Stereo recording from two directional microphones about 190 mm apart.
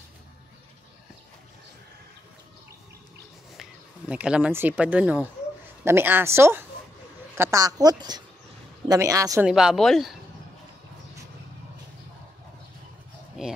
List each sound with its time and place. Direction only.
4.1 s a woman's voice: 5° right (ahead or behind)
9.5 s speech: 5° right (ahead or behind)
13.4 s a sound: centre (ahead or behind)